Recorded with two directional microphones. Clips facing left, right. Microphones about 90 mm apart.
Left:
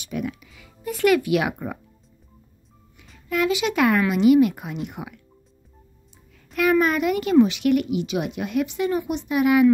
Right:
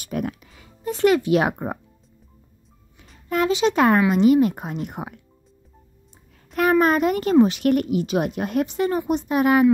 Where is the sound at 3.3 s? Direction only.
35° right (ahead or behind).